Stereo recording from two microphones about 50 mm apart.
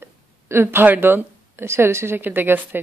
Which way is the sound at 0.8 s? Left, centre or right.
Right.